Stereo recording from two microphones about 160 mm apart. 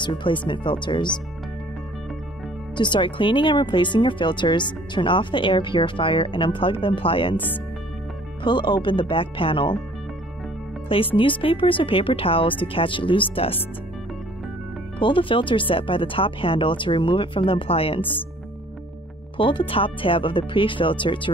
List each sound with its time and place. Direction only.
0.0 s speech: 30° left (ahead or behind)
2.8 s speech: 30° left (ahead or behind)
8.5 s speech: 30° left (ahead or behind)
11.1 s speech: 30° left (ahead or behind)
15.0 s speech: 30° left (ahead or behind)
19.3 s speech: 30° left (ahead or behind)